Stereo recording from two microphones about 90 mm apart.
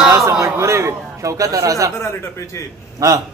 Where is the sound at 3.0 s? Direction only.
40° right (ahead or behind).